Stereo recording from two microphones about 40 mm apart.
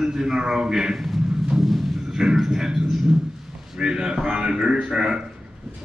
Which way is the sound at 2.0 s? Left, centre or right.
Centre.